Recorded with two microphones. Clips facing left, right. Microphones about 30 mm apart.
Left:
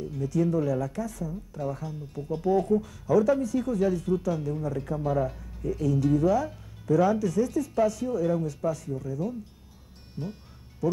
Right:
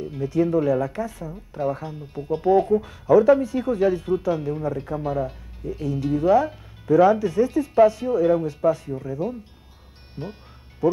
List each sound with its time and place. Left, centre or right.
0.0 s speech: right